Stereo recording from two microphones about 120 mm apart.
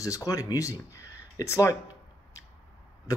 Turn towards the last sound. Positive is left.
turn(degrees=30)  # may be behind; listen again after turning